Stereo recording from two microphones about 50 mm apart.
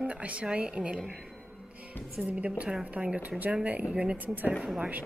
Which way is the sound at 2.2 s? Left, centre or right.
Centre.